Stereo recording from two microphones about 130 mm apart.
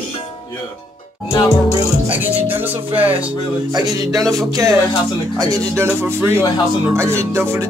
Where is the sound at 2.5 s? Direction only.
15° right (ahead or behind).